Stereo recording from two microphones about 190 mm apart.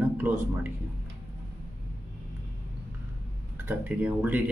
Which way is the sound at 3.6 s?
10° right (ahead or behind).